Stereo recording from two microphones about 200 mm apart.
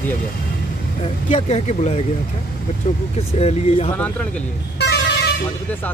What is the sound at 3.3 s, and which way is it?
Speech, 30° left (ahead or behind).